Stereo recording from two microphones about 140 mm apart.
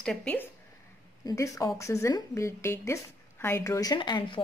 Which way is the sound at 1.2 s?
25° left (ahead or behind).